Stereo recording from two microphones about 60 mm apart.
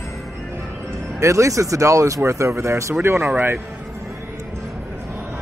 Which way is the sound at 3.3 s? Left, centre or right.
Right.